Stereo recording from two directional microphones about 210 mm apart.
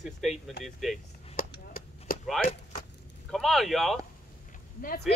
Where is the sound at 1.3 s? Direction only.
45° left (ahead or behind).